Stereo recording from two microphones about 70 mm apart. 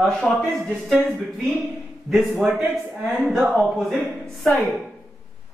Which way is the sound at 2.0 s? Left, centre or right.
Centre.